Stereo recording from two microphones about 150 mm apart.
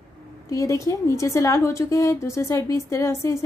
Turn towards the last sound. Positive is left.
turn(degrees=20)  # may be behind; listen again after turning